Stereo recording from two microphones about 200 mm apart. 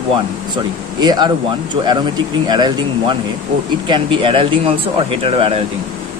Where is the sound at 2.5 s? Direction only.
20° right (ahead or behind).